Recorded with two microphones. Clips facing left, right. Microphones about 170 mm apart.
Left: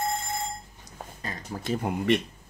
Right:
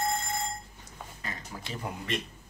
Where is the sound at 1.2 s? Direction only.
35° left (ahead or behind); by 2.2 s 60° left (ahead or behind).